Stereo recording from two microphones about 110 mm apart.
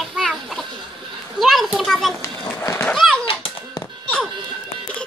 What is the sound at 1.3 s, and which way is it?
Children playing, centre (ahead or behind).